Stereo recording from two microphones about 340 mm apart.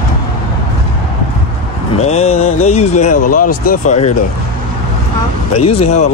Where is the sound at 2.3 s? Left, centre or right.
Left.